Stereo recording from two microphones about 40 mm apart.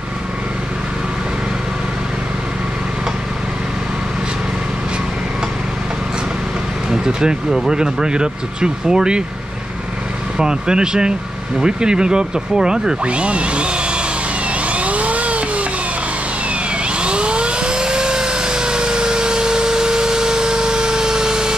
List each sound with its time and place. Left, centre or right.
6.9 s vehicle: centre
7.7 s speech: centre
10.3 s speech: centre
13.0 s a sound: right
14.5 s vehicle: right
16.8 s a sound: right